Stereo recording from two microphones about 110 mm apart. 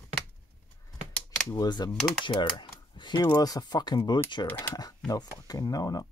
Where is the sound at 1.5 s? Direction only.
40° left (ahead or behind).